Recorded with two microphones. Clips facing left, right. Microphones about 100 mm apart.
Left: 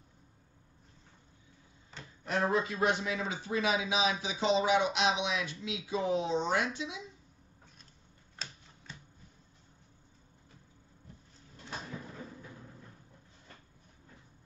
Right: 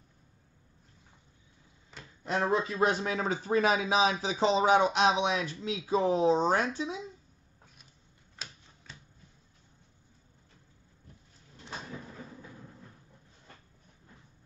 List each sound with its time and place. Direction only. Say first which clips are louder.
2.5 s speech: right 4 dB; 30° right (ahead or behind)